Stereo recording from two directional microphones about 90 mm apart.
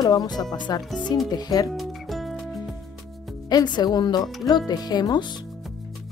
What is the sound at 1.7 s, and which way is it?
Music, centre (ahead or behind).